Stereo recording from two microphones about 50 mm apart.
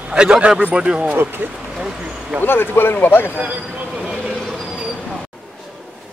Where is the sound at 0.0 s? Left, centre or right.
Right.